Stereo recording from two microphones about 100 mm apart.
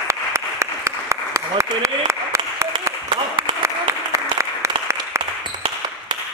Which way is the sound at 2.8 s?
30° right (ahead or behind).